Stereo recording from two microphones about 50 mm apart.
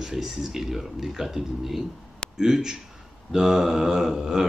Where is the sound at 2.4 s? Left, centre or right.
Centre.